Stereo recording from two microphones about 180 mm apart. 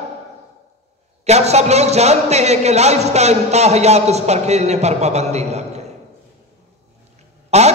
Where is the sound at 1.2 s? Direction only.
35° right (ahead or behind).